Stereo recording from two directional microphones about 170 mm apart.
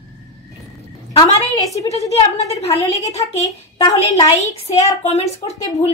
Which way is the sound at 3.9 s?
40° left (ahead or behind).